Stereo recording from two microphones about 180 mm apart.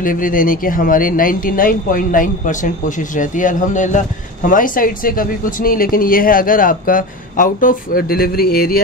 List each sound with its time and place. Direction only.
0.0 s speech: 50° left (ahead or behind)